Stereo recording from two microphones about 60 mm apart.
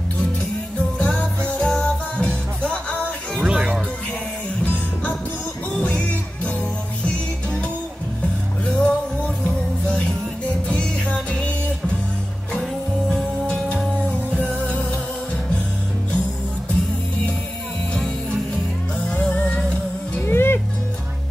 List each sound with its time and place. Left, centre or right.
0.9 s music: centre
3.4 s music: centre
5.8 s music: left
8.6 s music: centre
13.1 s music: centre
14.3 s music: left
19.0 s music: left
20.2 s music: left